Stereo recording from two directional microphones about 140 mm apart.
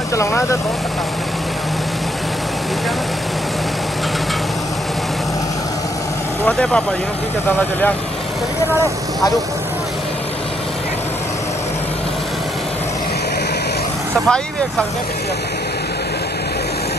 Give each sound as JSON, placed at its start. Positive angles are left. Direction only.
{"t": 0.1, "sound": "speech", "side_deg": 20}
{"t": 6.4, "sound": "speech", "side_deg": 5}
{"t": 14.2, "sound": "speech", "side_deg": 5}